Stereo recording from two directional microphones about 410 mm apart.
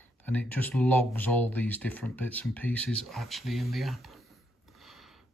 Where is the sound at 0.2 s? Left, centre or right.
Centre.